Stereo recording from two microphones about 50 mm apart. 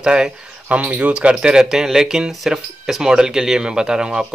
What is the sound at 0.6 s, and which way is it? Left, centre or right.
Speech, right.